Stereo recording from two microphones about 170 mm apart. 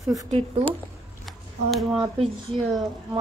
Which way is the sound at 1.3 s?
Centre (ahead or behind).